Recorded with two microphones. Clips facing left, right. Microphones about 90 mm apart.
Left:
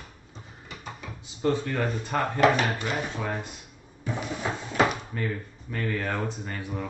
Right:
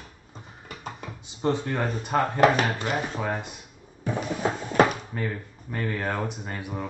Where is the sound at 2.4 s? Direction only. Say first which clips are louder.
Even; 30° right (ahead or behind).